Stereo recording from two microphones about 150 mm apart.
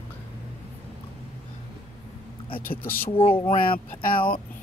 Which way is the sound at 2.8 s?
15° left (ahead or behind).